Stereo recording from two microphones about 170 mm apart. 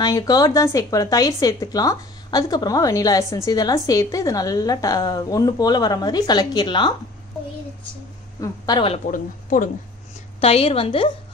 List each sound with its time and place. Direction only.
0.0 s a woman's voice: 25° left (ahead or behind)
8.4 s a woman's voice: 25° left (ahead or behind)
9.1 s speech: 50° left (ahead or behind)
10.4 s a woman's voice: 35° left (ahead or behind)